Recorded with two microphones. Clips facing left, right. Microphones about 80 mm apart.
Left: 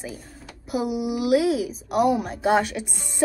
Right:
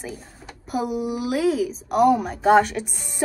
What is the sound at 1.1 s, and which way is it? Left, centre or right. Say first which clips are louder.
Speech: left 2 dB; right.